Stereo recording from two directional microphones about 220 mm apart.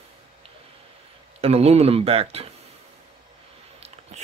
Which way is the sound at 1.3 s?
25° right (ahead or behind).